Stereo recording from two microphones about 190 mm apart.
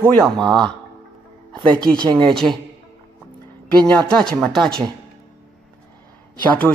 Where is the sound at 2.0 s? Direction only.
25° right (ahead or behind).